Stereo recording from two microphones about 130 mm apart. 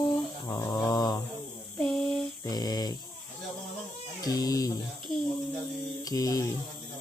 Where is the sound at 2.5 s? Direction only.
30° left (ahead or behind).